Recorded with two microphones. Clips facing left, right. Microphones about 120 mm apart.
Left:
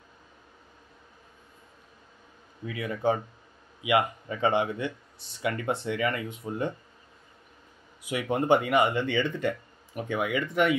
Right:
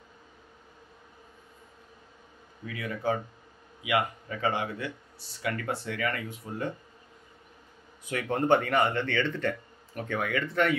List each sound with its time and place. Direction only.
2.6 s speech: 25° left (ahead or behind)
8.0 s speech: 10° left (ahead or behind)